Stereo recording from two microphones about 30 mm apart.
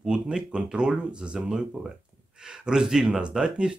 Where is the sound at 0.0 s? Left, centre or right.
Right.